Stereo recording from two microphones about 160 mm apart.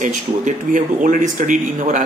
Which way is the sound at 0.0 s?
50° right (ahead or behind).